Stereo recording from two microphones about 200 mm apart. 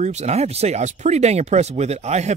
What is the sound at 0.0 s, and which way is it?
Speech, 35° right (ahead or behind).